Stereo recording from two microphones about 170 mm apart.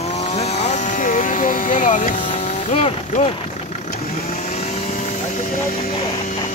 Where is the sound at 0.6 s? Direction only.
50° left (ahead or behind).